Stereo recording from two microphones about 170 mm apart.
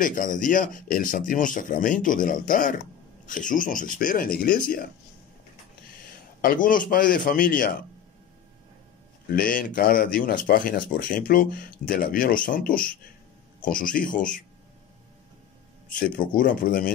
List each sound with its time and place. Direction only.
0.0 s speech: 50° left (ahead or behind)
6.4 s speech: 55° left (ahead or behind)
9.3 s speech: 55° left (ahead or behind)
15.9 s speech: 55° left (ahead or behind)